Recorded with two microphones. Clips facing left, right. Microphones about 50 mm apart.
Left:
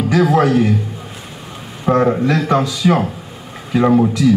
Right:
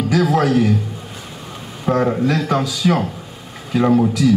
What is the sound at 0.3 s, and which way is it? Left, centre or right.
Speech, centre.